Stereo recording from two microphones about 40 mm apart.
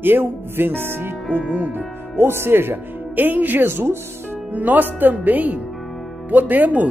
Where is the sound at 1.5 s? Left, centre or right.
Right.